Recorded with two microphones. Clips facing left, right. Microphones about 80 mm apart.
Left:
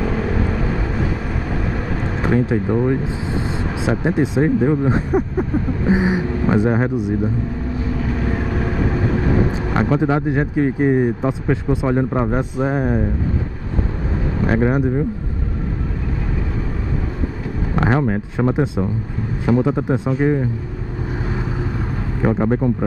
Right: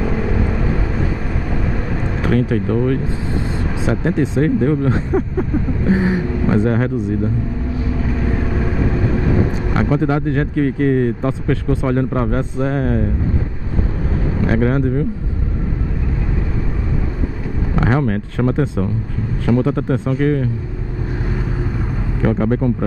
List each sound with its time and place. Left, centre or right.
0.0 s vehicle: centre
2.2 s speech: centre
9.7 s speech: centre
14.4 s speech: centre
17.7 s a man's voice: centre
22.2 s speech: centre